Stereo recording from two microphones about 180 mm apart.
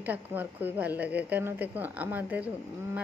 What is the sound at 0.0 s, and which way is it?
A woman's voice, 10° right (ahead or behind).